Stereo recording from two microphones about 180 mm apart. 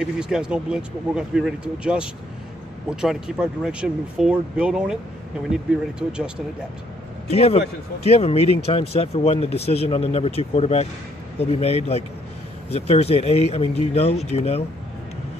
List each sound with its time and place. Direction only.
0.0 s speech: 5° right (ahead or behind)
7.2 s speech: 35° left (ahead or behind)